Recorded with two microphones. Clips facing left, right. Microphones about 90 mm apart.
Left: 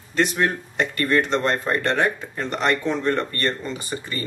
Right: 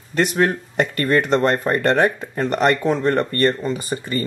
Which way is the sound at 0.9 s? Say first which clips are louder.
Right 3 dB; 45° right (ahead or behind).